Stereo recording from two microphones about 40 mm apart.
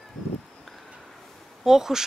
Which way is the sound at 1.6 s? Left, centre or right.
Centre.